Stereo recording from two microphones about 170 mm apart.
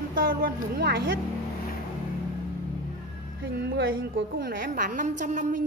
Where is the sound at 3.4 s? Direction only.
90° right.